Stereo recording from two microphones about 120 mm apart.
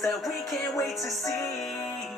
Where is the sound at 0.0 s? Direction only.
Centre (ahead or behind).